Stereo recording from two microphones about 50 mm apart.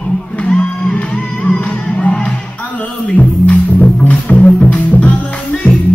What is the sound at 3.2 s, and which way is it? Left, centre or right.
Music, left.